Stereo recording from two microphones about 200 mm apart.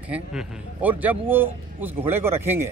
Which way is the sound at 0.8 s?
10° right (ahead or behind).